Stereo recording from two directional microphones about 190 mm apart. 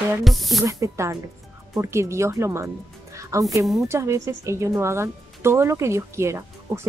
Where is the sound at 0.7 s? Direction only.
15° right (ahead or behind).